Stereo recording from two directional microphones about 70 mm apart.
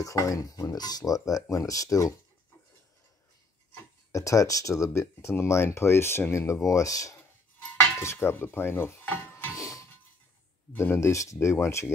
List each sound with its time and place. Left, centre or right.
0.0 s speech: left
4.1 s speech: left
8.0 s cutlery: left
9.0 s dishes: left
9.5 s a sound: left
10.7 s speech: left